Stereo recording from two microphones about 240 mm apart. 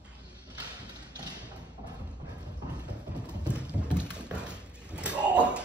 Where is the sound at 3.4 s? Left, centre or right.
Centre.